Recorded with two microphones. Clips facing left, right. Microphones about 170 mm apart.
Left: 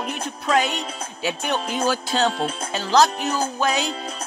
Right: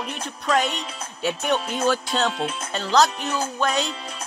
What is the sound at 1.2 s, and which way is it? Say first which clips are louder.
Music: right 2 dB; centre (ahead or behind).